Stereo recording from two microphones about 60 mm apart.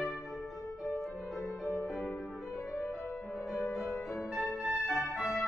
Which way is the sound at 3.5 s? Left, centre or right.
Left.